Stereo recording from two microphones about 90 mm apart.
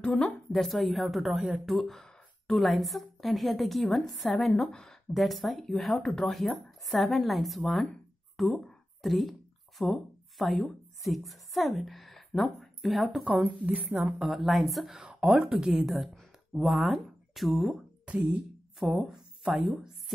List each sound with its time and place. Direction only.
0.0 s a woman's voice: 5° left (ahead or behind)
8.4 s a sound: centre (ahead or behind)
9.8 s a woman's voice: centre (ahead or behind)
13.2 s a woman's voice: 15° right (ahead or behind)
14.2 s a woman's voice: centre (ahead or behind)
18.0 s a woman's voice: 15° right (ahead or behind)